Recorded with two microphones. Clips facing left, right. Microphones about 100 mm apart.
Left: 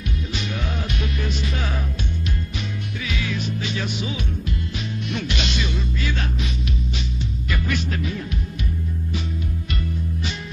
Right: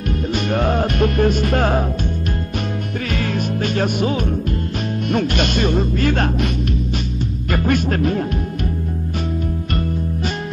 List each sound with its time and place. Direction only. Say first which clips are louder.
0.5 s music: right 14 dB; 50° right (ahead or behind)
3.1 s music: right 5 dB; 50° right (ahead or behind)
5.1 s speech: right 9 dB; 50° right (ahead or behind)
7.5 s speech: right 9 dB; 50° right (ahead or behind)